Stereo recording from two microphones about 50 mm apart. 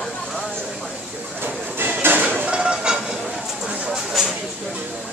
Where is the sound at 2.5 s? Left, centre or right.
Centre.